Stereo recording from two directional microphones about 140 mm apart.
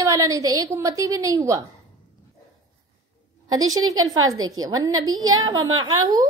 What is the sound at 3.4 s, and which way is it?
A woman's voice, 25° right (ahead or behind).